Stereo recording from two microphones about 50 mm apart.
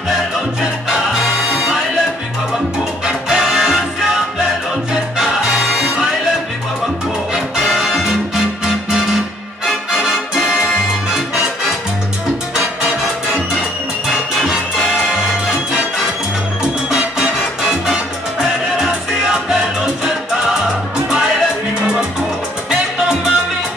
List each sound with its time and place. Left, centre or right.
0.8 s music: centre
3.1 s music: centre
5.1 s salsa music: centre
7.3 s music: centre
12.5 s music: centre
18.4 s music: centre
22.7 s music: centre